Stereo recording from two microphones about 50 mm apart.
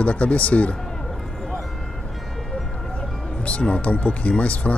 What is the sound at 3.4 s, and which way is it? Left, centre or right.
Speech, left.